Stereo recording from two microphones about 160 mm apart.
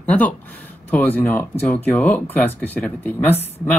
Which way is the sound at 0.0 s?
10° left (ahead or behind).